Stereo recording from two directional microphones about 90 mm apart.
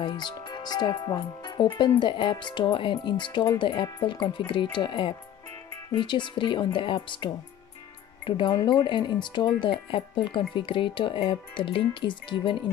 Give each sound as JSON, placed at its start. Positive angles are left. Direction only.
{"t": 0.0, "sound": "speech", "side_deg": 55}